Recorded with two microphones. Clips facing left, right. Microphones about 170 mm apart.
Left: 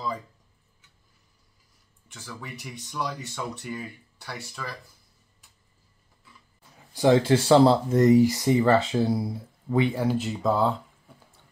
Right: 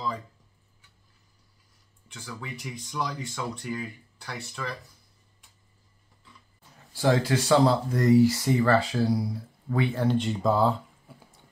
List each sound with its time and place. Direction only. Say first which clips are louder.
2.1 s speech: right 1 dB; 5° left (ahead or behind)
6.9 s speech: left 4 dB; 20° left (ahead or behind); by 11.1 s centre (ahead or behind)